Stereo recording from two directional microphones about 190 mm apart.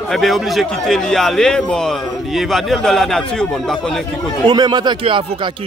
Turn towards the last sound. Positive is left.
turn(degrees=-25)  # may be behind; listen again after turning